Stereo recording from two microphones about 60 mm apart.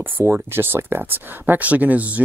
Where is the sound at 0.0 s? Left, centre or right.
Right.